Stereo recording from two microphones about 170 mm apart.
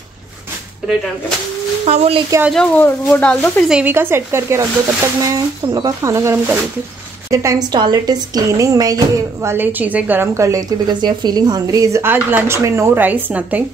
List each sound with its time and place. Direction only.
1.9 s speech: 35° right (ahead or behind)
2.5 s speech: 5° left (ahead or behind)
3.7 s speech: 10° right (ahead or behind)